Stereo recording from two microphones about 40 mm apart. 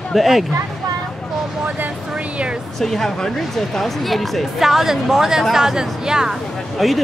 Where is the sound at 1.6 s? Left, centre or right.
Right.